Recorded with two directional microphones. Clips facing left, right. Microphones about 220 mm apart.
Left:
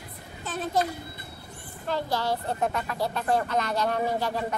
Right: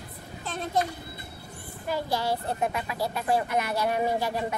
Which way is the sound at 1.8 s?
10° right (ahead or behind).